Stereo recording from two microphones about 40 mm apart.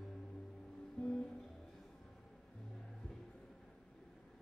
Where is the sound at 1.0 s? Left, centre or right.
Left.